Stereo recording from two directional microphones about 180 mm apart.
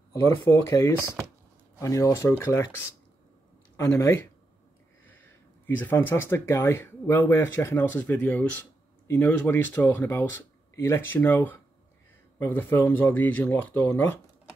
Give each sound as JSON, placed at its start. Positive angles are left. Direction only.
{"t": 0.7, "sound": "speech", "side_deg": 20}
{"t": 3.7, "sound": "speech", "side_deg": 15}
{"t": 5.7, "sound": "speech", "side_deg": 10}